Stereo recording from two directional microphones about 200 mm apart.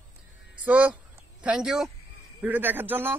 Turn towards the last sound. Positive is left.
turn(degrees=-10)  # may be behind; listen again after turning